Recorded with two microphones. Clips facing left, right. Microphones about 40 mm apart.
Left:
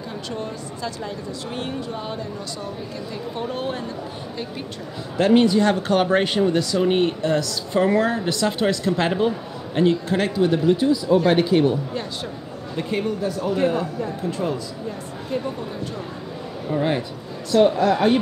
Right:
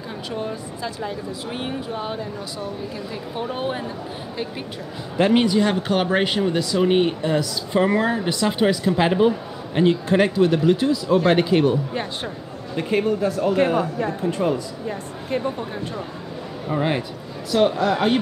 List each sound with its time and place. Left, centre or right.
0.3 s speech: centre
5.1 s speech: centre
10.3 s speech: centre
11.9 s speech: right
12.7 s speech: centre
15.3 s speech: right
16.6 s speech: centre
17.5 s speech: centre